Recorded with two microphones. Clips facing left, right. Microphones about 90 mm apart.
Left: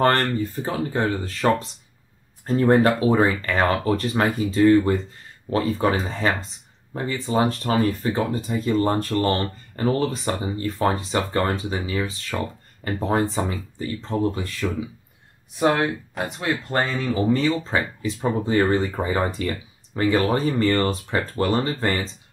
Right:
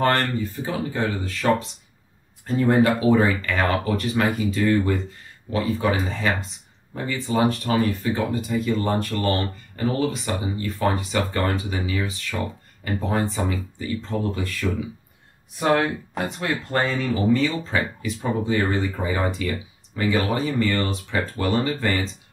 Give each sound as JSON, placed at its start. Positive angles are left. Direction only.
{"t": 0.0, "sound": "speech", "side_deg": 40}
{"t": 16.3, "sound": "speech", "side_deg": 25}